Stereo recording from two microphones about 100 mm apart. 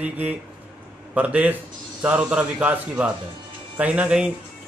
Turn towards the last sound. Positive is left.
turn(degrees=-10)  # may be behind; listen again after turning